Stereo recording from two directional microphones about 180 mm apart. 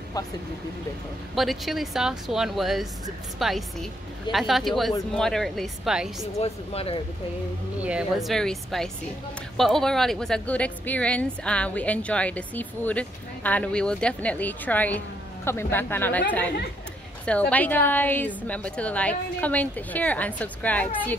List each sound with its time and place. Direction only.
1.3 s speech: centre (ahead or behind)
6.4 s speech: 35° left (ahead or behind)
7.8 s a woman's voice: 5° right (ahead or behind)